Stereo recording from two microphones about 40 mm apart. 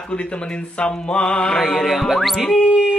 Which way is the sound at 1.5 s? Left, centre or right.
Centre.